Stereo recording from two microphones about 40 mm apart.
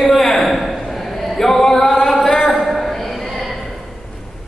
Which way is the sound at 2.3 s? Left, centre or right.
Left.